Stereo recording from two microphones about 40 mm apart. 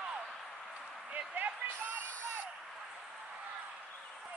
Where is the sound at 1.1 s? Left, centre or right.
Right.